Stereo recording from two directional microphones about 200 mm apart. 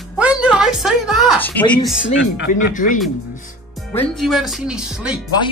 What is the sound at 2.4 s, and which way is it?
Speech, 40° left (ahead or behind).